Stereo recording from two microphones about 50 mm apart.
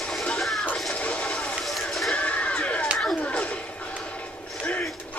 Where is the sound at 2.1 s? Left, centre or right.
Left.